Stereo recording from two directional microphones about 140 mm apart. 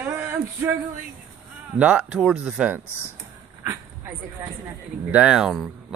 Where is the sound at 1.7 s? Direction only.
10° right (ahead or behind).